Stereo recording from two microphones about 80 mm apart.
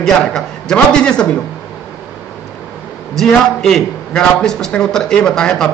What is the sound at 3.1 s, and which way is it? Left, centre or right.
Speech, centre.